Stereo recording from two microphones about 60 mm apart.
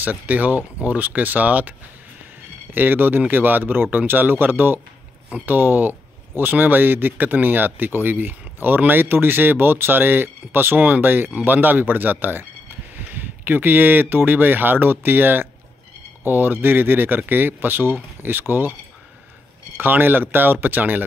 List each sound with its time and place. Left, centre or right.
0.0 s speech: right
2.7 s speech: right
19.8 s speech: right